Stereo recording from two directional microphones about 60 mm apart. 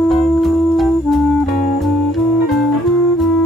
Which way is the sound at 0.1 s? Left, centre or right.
Centre.